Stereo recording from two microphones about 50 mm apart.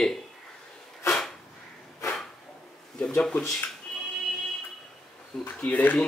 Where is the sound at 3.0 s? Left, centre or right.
Centre.